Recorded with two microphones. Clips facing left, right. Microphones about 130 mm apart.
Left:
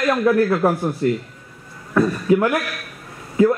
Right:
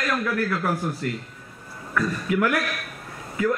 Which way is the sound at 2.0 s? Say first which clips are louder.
Left 7 dB; 30° left (ahead or behind).